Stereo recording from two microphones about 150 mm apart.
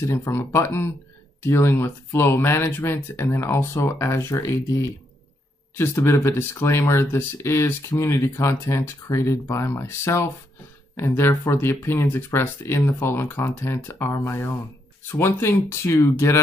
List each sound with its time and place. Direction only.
0.0 s speech: 20° left (ahead or behind)